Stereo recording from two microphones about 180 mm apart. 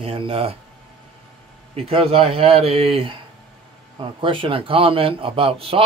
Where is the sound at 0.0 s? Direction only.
30° right (ahead or behind).